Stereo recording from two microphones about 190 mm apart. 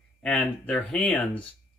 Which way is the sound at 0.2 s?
5° left (ahead or behind).